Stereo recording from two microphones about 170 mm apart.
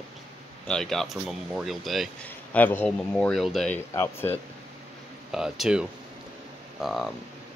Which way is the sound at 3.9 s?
15° left (ahead or behind).